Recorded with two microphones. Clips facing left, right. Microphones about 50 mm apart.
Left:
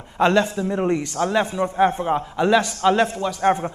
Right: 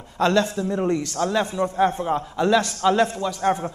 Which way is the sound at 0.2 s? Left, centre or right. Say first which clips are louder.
Left 2 dB; left.